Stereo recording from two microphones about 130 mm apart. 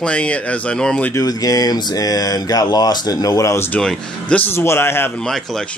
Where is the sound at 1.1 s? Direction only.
30° left (ahead or behind).